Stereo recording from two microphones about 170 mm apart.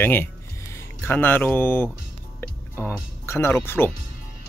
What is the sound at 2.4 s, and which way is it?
Music, 10° left (ahead or behind).